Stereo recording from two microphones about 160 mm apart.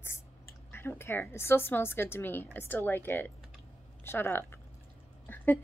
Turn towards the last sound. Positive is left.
turn(degrees=10)  # may be behind; listen again after turning